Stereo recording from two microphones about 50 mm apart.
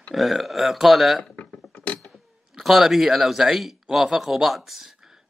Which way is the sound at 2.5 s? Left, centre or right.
Centre.